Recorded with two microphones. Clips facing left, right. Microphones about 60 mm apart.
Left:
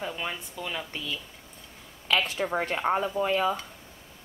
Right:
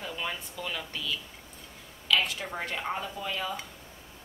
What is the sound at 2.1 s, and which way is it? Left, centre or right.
Speech, left.